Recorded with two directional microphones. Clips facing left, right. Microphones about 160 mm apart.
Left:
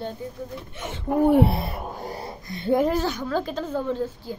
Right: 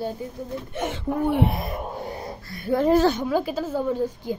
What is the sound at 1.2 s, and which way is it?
A woman's voice, 40° left (ahead or behind).